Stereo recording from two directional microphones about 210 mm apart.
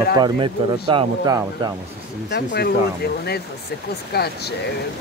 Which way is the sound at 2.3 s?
55° left (ahead or behind).